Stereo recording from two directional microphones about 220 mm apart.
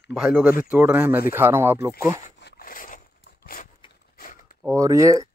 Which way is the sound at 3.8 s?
25° left (ahead or behind).